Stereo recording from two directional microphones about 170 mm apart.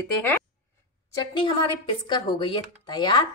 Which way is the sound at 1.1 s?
30° left (ahead or behind).